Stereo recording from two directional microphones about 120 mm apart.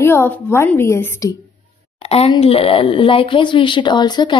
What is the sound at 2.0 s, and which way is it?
A woman's voice, 55° left (ahead or behind).